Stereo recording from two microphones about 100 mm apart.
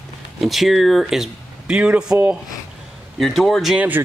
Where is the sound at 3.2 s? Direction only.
Centre (ahead or behind).